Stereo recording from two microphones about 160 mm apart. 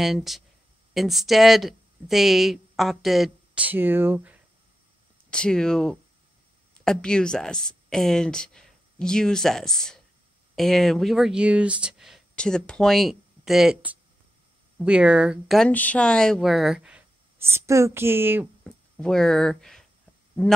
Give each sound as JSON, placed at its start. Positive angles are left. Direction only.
{"t": 0.0, "sound": "a woman's voice", "side_deg": 0}
{"t": 5.3, "sound": "a woman's voice", "side_deg": 5}
{"t": 17.4, "sound": "a woman's voice", "side_deg": -15}
{"t": 18.6, "sound": "a sound", "side_deg": 5}